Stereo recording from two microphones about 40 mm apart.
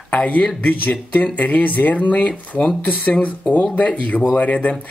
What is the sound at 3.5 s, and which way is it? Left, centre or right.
Speech, left.